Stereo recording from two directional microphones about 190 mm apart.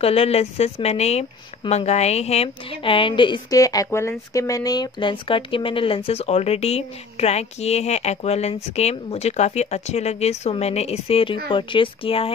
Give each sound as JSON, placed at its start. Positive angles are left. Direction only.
{"t": 0.0, "sound": "speech", "side_deg": 30}